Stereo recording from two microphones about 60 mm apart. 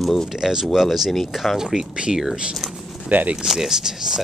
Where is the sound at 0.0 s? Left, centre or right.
Centre.